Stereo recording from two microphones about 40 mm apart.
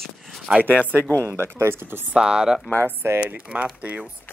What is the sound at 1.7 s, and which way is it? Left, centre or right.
Speech, right.